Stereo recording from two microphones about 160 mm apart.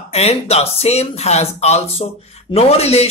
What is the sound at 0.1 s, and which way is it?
Speech, 40° left (ahead or behind).